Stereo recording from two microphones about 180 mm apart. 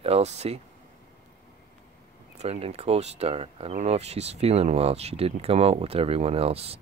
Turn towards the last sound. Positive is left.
turn(degrees=-35)  # may be behind; listen again after turning